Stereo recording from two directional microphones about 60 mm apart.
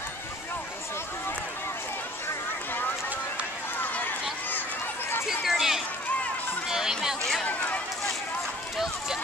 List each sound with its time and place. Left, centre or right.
3.8 s run: left
5.2 s a sound: centre
7.4 s run: left